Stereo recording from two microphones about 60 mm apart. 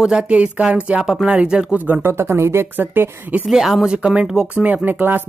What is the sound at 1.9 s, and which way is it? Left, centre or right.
Speech, right.